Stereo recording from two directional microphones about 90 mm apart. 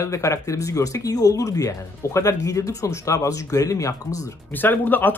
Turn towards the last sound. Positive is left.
turn(degrees=20)  # may be behind; listen again after turning